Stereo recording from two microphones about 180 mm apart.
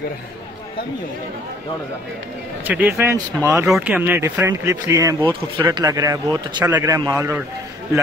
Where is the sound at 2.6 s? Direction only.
10° right (ahead or behind).